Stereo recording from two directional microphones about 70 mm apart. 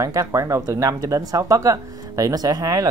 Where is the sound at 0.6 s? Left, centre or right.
Right.